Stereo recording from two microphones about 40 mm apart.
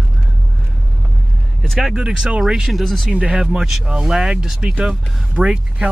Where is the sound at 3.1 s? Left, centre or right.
Centre.